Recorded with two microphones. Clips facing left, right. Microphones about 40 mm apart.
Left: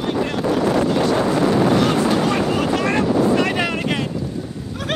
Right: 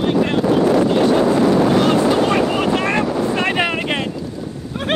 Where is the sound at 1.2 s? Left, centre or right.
Centre.